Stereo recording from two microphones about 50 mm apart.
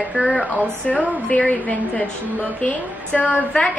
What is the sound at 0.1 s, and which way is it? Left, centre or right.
Speech, centre.